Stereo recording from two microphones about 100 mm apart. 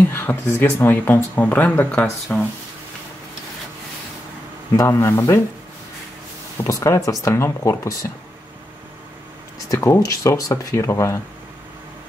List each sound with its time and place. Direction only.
0.1 s speech: 25° left (ahead or behind)
4.7 s speech: 30° left (ahead or behind)
6.6 s speech: 30° left (ahead or behind)
9.7 s speech: 30° left (ahead or behind)